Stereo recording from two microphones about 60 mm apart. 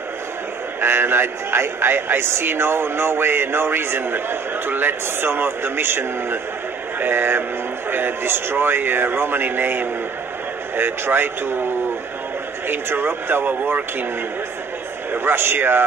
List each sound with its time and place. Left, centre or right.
0.7 s a man's voice: right
7.0 s a sound: right
7.9 s a man's voice: right
12.6 s a man's voice: right
15.2 s a man's voice: right